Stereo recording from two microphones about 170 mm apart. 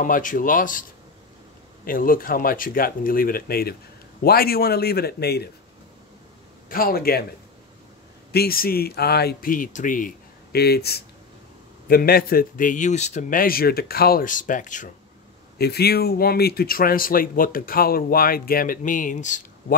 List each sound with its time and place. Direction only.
0.0 s speech: 50° left (ahead or behind)
1.9 s speech: 55° left (ahead or behind)
6.7 s speech: 60° left (ahead or behind)
8.3 s speech: 65° left (ahead or behind); by 14.9 s 50° left (ahead or behind)
15.5 s speech: 70° left (ahead or behind); by 19.4 s 45° left (ahead or behind)